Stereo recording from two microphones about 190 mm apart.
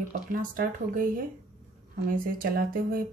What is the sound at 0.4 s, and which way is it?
Speech, 45° right (ahead or behind).